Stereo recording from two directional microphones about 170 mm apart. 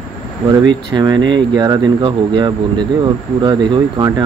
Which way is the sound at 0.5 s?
25° right (ahead or behind).